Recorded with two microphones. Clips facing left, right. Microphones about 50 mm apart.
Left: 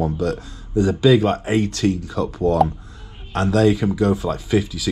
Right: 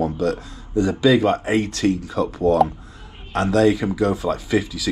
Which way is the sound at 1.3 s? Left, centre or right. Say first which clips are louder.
Even; right.